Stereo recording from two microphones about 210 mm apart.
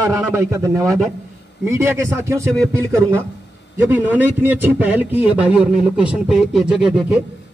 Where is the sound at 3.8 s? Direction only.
10° right (ahead or behind).